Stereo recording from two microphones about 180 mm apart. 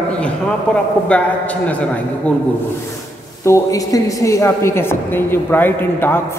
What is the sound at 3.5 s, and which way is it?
A woman's voice, 15° left (ahead or behind).